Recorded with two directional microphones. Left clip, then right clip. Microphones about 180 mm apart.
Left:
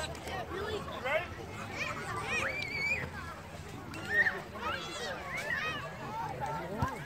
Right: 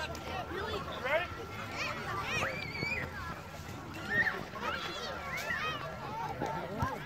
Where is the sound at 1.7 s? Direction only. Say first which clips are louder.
Even; 50° right (ahead or behind).